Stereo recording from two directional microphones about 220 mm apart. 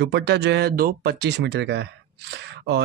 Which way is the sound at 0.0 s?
50° right (ahead or behind).